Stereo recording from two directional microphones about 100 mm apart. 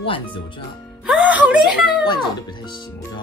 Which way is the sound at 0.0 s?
65° left (ahead or behind).